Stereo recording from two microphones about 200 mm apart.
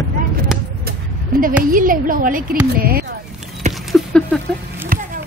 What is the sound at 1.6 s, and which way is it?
Speech, 45° right (ahead or behind).